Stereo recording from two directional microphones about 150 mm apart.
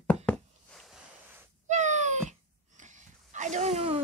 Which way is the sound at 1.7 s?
50° right (ahead or behind).